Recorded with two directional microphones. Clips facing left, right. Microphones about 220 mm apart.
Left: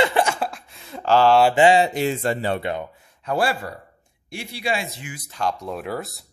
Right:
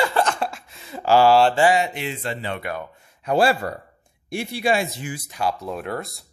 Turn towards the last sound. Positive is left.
turn(degrees=0)  # may be behind; listen again after turning